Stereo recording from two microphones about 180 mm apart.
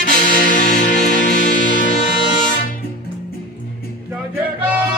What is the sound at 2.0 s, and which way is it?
Music, 45° left (ahead or behind).